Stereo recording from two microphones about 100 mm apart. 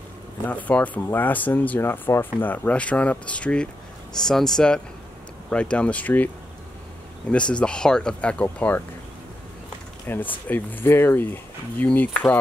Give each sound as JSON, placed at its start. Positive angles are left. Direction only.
{"t": 0.5, "sound": "speech", "side_deg": 15}
{"t": 10.0, "sound": "speech", "side_deg": 20}